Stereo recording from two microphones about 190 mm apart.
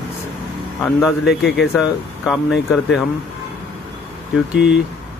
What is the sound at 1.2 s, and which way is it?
Speech, 65° left (ahead or behind).